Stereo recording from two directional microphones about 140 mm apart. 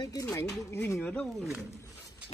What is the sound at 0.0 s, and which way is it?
A man's voice, 25° left (ahead or behind).